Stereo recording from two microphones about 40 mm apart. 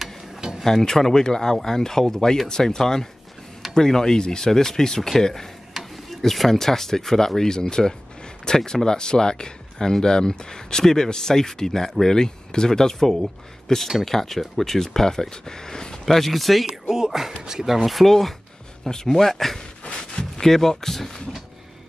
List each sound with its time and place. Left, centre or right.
0.8 s speech: centre
16.6 s speech: centre